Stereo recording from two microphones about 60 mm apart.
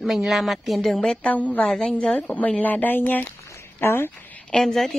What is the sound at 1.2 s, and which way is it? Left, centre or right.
Speech, left.